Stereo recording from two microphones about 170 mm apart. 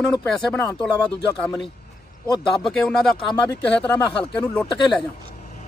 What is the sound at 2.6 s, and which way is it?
Speech, 5° left (ahead or behind).